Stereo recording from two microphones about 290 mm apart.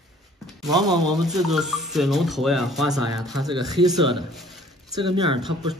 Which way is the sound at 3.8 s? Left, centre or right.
Centre.